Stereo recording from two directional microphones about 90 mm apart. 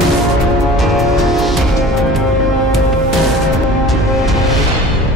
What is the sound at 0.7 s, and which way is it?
Music, centre (ahead or behind).